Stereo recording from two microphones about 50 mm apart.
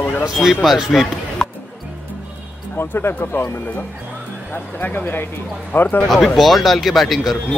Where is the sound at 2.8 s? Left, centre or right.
Left.